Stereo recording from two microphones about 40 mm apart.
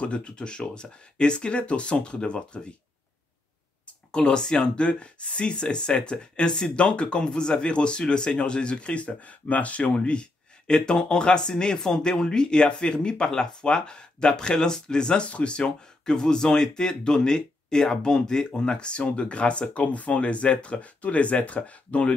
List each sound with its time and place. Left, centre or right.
0.0 s speech: left
4.1 s speech: left
9.9 s speech: left